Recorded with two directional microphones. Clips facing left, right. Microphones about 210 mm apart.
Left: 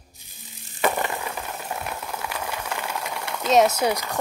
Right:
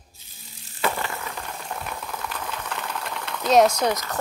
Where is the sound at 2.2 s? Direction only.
10° left (ahead or behind).